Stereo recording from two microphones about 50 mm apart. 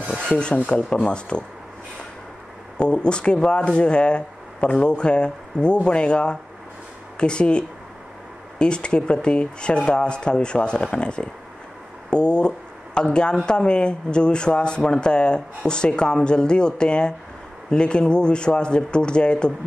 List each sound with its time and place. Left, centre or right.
0.7 s speech: left
2.8 s speech: centre